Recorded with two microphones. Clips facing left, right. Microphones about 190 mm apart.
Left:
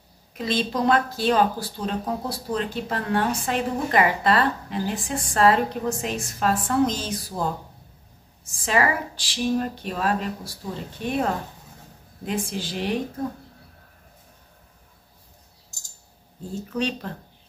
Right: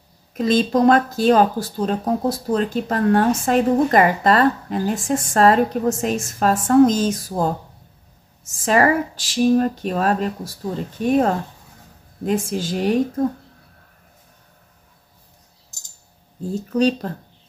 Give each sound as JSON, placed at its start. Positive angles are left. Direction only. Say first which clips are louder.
{"t": 0.3, "sound": "speech", "louder": "right 8 dB", "side_deg": -45}
{"t": 16.7, "sound": "speech", "louder": "right 9 dB", "side_deg": -40}